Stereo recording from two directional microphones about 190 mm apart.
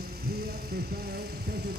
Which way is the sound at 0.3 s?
55° right (ahead or behind).